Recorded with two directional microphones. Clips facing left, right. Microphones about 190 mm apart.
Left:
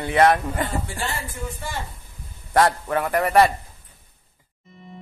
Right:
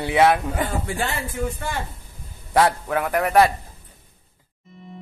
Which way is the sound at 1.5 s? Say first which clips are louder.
Right 4 dB; 60° right (ahead or behind).